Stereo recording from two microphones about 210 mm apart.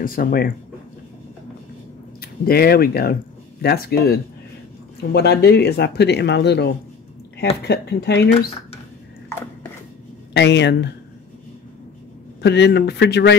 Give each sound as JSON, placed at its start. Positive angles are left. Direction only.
{"t": 0.0, "sound": "speech", "side_deg": 45}
{"t": 2.4, "sound": "speech", "side_deg": 45}
{"t": 10.3, "sound": "speech", "side_deg": 55}
{"t": 12.4, "sound": "speech", "side_deg": 55}